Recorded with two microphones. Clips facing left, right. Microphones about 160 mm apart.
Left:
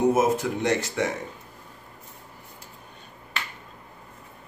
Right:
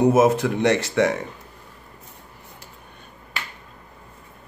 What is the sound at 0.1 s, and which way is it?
Speech, 75° right (ahead or behind).